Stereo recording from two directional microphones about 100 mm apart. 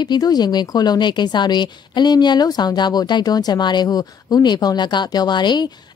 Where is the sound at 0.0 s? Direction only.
45° left (ahead or behind).